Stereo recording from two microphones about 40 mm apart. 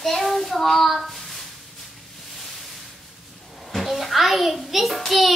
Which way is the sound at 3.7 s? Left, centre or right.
Centre.